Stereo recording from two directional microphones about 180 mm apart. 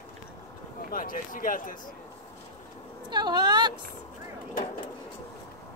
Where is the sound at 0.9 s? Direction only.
50° left (ahead or behind).